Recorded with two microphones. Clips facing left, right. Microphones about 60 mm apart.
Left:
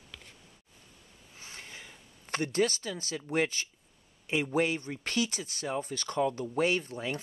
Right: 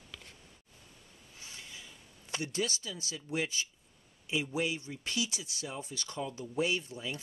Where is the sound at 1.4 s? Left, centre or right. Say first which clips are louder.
Left 3 dB; left.